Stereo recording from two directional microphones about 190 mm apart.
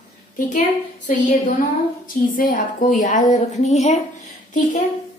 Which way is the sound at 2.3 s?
45° left (ahead or behind).